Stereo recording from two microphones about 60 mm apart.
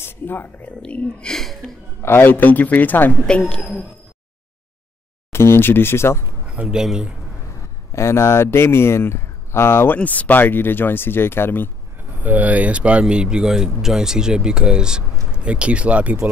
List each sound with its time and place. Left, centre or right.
0.0 s a sound: left
0.8 s speech: centre
2.0 s speech: left
3.3 s speech: centre
5.3 s speech: left
6.4 s speech: centre
7.9 s speech: left
9.9 s speech: left
12.2 s speech: right